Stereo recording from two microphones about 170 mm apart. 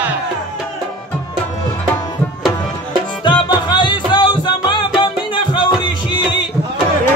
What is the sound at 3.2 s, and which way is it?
Music, 25° left (ahead or behind).